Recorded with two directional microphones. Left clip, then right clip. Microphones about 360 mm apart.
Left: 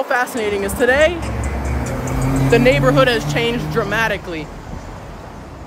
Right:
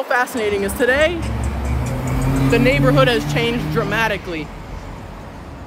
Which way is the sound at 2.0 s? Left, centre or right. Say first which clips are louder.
Even; left.